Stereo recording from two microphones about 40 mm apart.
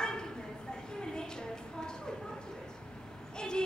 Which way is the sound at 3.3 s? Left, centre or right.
Centre.